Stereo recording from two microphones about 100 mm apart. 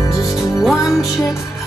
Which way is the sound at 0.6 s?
Centre (ahead or behind).